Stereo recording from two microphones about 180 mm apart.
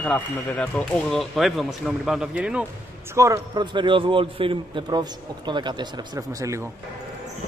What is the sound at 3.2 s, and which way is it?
A man's voice, 20° right (ahead or behind).